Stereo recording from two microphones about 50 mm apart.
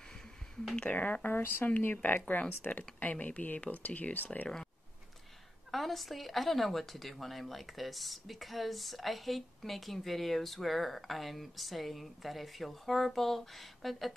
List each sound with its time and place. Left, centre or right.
0.8 s speech: left
5.7 s speech: centre